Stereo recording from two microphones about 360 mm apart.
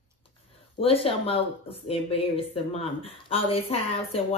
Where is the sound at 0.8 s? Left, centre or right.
Centre.